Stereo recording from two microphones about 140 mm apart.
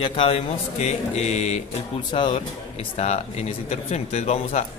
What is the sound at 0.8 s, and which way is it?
Mantra, 55° left (ahead or behind).